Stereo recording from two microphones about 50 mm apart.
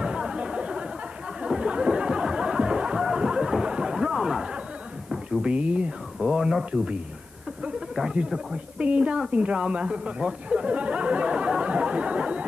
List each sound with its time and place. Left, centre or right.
0.0 s chatter: right
1.4 s a sound: centre
5.4 s speech: right
8.7 s speech: right